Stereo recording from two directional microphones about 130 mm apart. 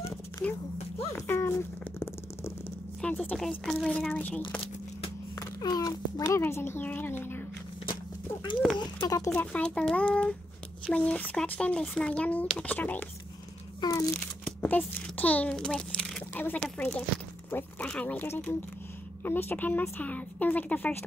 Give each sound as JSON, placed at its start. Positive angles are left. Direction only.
{"t": 0.0, "sound": "a sound", "side_deg": 15}
{"t": 3.0, "sound": "speech", "side_deg": 5}
{"t": 5.4, "sound": "a child's voice", "side_deg": 30}
{"t": 8.7, "sound": "speech", "side_deg": 30}
{"t": 9.3, "sound": "a woman's voice", "side_deg": 10}
{"t": 13.7, "sound": "speech", "side_deg": 25}
{"t": 14.4, "sound": "crumpling", "side_deg": 15}
{"t": 15.1, "sound": "a child's voice", "side_deg": 10}